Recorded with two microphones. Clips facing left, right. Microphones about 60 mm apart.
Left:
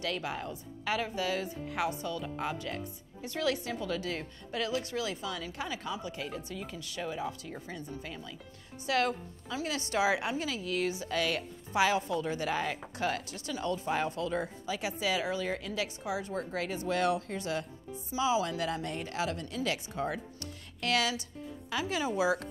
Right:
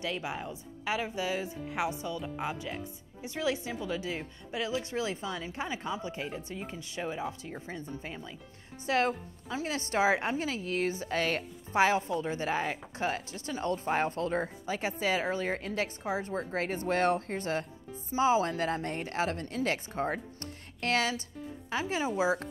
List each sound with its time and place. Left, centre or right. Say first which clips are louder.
0.0 s a woman's voice: even; centre